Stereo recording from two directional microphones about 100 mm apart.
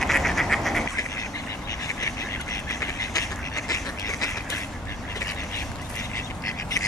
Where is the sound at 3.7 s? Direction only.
40° left (ahead or behind).